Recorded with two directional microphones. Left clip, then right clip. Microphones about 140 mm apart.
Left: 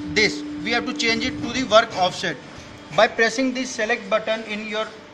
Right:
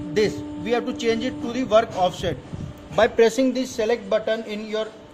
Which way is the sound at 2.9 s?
90° right.